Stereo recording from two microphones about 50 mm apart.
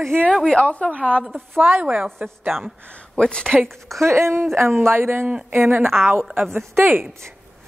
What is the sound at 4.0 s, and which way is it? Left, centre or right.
Speech, right.